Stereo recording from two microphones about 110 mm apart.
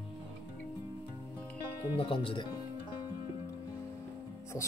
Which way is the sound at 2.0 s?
55° left (ahead or behind).